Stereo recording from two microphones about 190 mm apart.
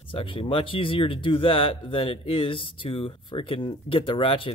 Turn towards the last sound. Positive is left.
turn(degrees=30)  # may be behind; listen again after turning